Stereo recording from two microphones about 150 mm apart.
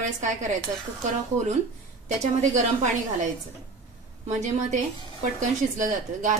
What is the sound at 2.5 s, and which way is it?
Speech, 55° right (ahead or behind).